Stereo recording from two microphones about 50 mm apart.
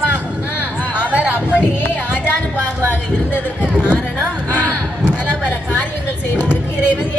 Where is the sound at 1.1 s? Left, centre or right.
Right.